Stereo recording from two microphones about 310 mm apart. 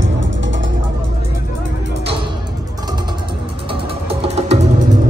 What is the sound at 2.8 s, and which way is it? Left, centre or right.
Vehicle, centre.